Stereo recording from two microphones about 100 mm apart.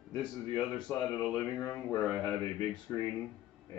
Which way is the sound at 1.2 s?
5° left (ahead or behind).